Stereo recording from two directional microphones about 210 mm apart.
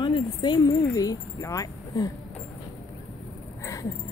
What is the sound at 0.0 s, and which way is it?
Speech, 20° left (ahead or behind).